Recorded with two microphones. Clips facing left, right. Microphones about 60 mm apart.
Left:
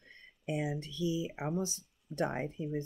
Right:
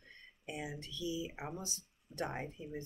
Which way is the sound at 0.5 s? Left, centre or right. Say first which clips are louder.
Left 8 dB; left.